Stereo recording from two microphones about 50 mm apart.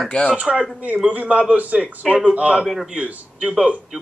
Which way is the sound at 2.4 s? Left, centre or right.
Right.